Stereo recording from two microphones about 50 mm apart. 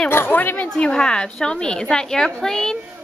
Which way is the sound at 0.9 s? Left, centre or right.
Centre.